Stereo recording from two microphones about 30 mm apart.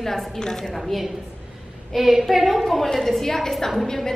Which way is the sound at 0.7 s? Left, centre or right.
Centre.